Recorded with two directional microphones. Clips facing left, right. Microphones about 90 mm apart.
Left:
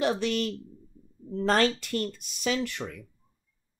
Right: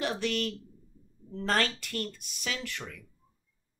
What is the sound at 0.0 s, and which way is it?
A woman's voice, 25° left (ahead or behind).